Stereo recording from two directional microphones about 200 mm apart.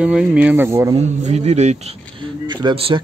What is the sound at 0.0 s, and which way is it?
Speech, 5° right (ahead or behind).